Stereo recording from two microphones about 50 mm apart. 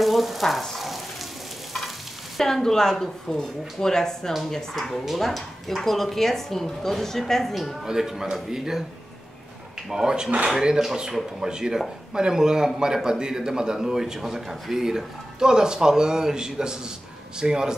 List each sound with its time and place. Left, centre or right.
0.0 s frying: centre
2.3 s speech: centre
7.8 s a man's voice: centre
9.8 s a man's voice: centre